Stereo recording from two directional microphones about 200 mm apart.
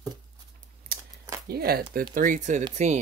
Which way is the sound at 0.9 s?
50° right (ahead or behind).